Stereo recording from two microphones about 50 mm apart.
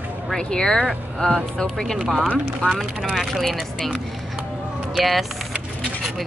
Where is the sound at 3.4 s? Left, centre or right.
Centre.